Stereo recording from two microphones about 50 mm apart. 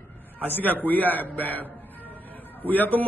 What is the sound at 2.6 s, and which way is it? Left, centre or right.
Speech, left.